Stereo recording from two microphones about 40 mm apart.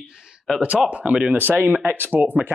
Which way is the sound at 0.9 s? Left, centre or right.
Right.